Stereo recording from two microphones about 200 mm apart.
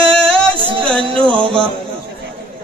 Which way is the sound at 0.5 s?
25° right (ahead or behind).